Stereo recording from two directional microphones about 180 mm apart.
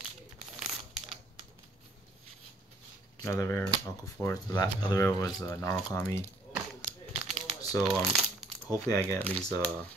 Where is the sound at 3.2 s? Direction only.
15° left (ahead or behind).